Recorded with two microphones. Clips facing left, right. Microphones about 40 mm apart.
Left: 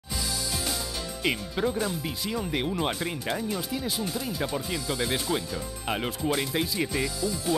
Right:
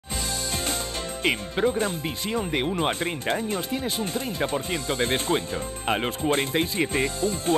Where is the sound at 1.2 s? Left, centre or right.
Right.